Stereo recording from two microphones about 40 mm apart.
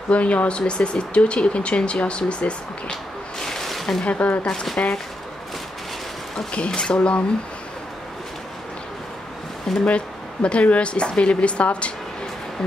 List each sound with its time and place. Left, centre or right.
0.1 s speech: left
0.6 s speech: left
3.4 s a sound: centre
4.0 s speech: left
6.5 s speech: left
9.8 s speech: left